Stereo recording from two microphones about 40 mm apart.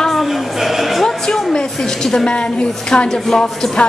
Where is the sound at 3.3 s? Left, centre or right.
Centre.